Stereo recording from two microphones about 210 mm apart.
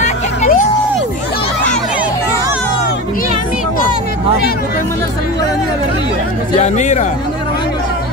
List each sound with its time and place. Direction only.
0.0 s vehicle: 35° left (ahead or behind)
6.6 s speech: 35° left (ahead or behind)